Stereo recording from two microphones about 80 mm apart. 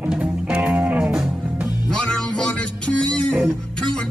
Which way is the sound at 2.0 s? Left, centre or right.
Centre.